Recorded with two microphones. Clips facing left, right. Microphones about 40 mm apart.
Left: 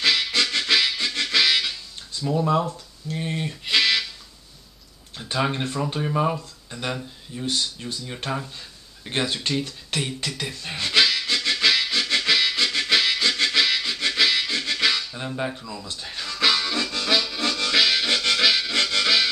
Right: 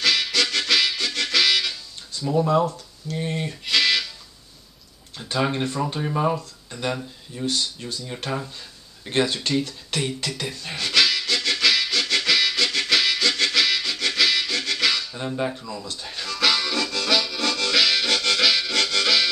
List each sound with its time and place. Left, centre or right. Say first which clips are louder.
0.0 s harmonica: even; left
2.2 s speech: right 2 dB; centre
2.6 s speech: right 4 dB; left
3.6 s music: even; centre
5.1 s speech: right 1 dB; centre
9.7 s beatboxing: right 1 dB; centre
10.3 s speech: even; centre
10.8 s harmonica: even; left
15.1 s speech: right 2 dB; centre
16.0 s music: even; centre